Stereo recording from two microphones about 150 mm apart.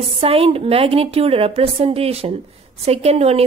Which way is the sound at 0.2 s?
40° right (ahead or behind).